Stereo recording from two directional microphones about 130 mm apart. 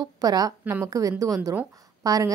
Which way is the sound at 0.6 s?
15° right (ahead or behind).